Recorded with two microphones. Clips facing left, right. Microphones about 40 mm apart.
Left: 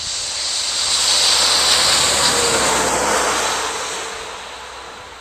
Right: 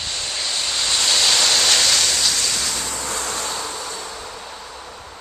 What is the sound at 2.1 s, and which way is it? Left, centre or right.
Vehicle, left.